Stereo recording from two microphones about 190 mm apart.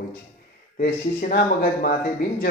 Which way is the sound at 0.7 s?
50° left (ahead or behind).